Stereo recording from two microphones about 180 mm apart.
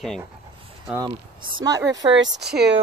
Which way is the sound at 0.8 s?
20° right (ahead or behind).